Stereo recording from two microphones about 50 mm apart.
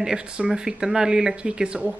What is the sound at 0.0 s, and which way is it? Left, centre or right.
Speech, centre.